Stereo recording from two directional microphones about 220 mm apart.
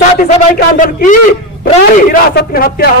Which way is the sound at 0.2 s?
40° left (ahead or behind).